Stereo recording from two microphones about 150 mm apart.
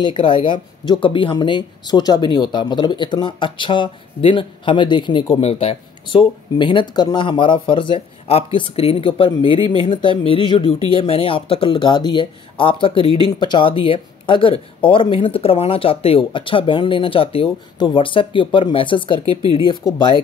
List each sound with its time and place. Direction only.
0.0 s speech: 35° left (ahead or behind)